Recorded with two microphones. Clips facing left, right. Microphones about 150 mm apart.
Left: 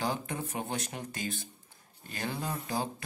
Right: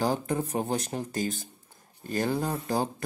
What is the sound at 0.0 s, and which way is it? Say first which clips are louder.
Speech: right 6 dB; 40° right (ahead or behind).